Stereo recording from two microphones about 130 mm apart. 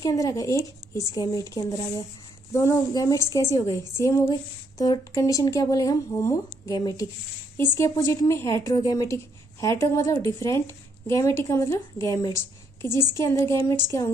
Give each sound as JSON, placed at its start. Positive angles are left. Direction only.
{"t": 0.0, "sound": "a woman's voice", "side_deg": 25}